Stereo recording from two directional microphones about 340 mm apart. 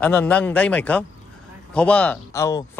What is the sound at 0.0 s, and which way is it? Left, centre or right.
Speech, centre.